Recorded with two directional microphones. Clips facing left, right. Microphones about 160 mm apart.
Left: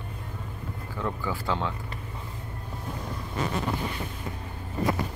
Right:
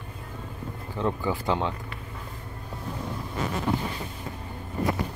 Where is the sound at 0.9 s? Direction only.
20° right (ahead or behind).